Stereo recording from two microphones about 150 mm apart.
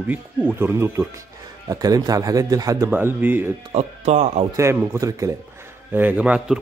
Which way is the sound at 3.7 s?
45° right (ahead or behind).